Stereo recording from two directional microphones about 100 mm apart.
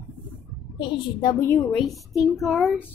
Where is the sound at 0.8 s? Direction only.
55° left (ahead or behind).